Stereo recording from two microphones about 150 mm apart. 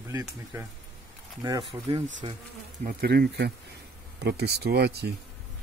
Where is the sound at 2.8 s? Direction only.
80° right.